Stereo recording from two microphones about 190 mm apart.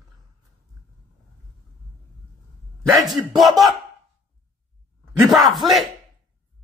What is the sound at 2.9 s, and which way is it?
Speech, centre (ahead or behind).